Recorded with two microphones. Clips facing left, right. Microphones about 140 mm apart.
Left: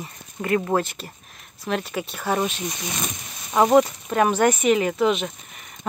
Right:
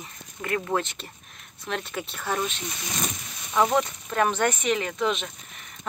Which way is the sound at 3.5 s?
35° left (ahead or behind).